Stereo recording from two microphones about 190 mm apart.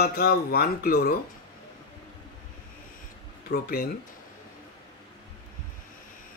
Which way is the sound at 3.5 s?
50° left (ahead or behind).